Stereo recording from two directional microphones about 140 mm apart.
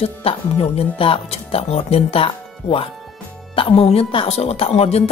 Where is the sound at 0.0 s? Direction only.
45° left (ahead or behind).